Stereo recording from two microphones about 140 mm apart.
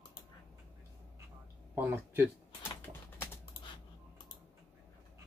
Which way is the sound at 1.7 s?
15° right (ahead or behind).